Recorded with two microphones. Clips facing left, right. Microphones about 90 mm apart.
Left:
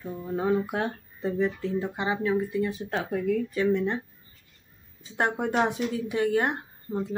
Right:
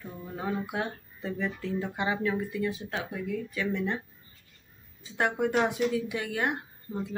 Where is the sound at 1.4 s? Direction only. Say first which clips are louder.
Left 4 dB; 25° left (ahead or behind).